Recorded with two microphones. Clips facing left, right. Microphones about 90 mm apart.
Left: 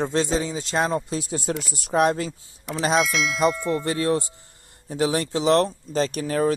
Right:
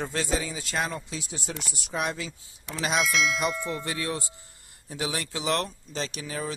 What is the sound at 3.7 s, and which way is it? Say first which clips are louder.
Speech: left 9 dB; 35° left (ahead or behind).